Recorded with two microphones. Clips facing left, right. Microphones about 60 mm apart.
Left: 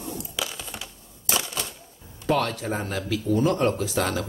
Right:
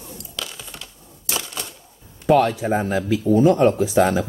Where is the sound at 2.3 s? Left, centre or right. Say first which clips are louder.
Right 8 dB; centre.